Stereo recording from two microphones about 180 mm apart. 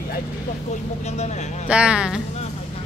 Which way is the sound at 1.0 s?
40° left (ahead or behind).